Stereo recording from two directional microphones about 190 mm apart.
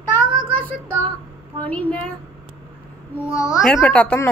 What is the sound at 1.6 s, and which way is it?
Speech, 10° left (ahead or behind).